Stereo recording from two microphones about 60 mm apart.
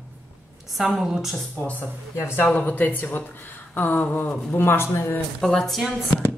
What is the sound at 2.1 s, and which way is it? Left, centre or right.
Speech, left.